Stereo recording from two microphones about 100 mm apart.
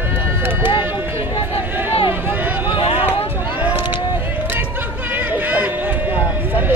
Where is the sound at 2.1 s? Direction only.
20° right (ahead or behind).